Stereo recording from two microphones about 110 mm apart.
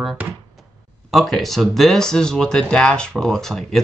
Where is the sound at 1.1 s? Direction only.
Centre (ahead or behind).